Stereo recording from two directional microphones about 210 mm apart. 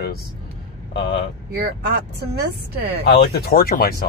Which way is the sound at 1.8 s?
50° right (ahead or behind).